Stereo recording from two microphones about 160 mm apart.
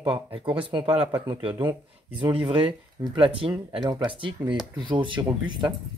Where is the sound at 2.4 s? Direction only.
35° right (ahead or behind).